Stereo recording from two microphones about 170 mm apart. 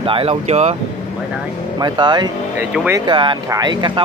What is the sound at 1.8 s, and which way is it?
Speech, 25° right (ahead or behind).